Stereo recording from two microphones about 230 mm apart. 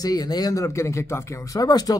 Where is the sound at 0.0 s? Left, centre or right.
Centre.